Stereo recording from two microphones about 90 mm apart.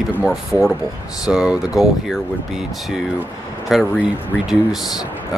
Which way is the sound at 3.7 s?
Centre (ahead or behind).